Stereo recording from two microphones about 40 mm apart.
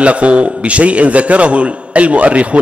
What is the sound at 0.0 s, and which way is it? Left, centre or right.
A man's voice, right.